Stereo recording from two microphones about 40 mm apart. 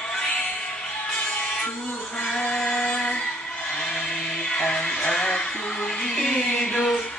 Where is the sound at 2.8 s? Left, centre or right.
Left.